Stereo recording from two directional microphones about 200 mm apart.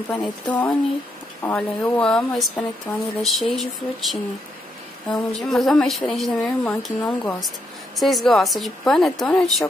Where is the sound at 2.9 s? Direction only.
15° left (ahead or behind).